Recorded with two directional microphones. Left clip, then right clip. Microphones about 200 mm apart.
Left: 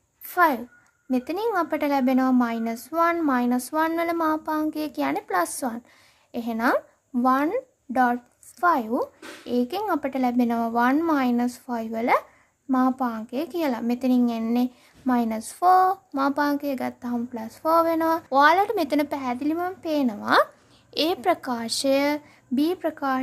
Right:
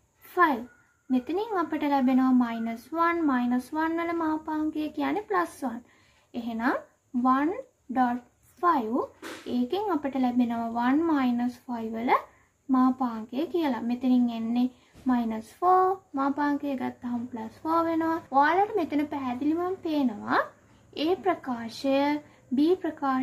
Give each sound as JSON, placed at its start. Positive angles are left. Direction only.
{"t": 0.3, "sound": "a child's voice", "side_deg": 50}